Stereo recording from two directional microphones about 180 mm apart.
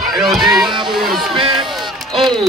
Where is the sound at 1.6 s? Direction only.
Centre (ahead or behind).